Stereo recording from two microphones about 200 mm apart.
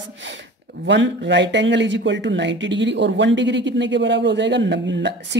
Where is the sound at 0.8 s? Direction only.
60° right (ahead or behind).